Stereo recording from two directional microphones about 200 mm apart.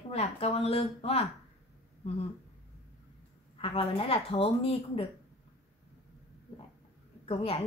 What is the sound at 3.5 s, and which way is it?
A woman's voice, 30° left (ahead or behind).